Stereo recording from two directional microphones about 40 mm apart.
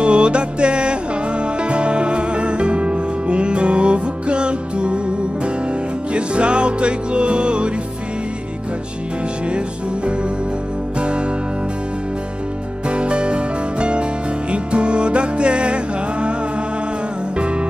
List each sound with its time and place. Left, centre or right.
0.0 s music: right
11.0 s music: right
12.8 s music: right